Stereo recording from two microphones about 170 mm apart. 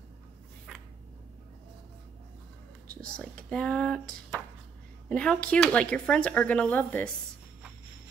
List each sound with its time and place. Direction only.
2.9 s speech: 5° left (ahead or behind)